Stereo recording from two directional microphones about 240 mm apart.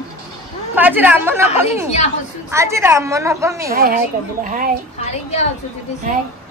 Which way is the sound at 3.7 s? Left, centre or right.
Right.